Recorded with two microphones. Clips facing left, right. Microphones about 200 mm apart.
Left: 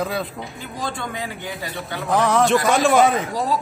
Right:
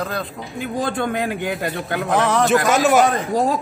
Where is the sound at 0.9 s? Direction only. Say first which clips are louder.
Right 8 dB; 55° right (ahead or behind).